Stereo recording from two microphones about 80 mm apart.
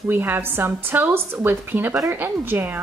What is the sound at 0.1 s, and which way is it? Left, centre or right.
A woman's voice, right.